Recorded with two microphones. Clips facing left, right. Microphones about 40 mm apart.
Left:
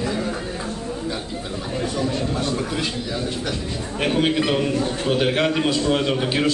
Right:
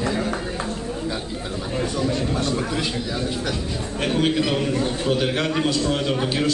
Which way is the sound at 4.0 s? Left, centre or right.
Centre.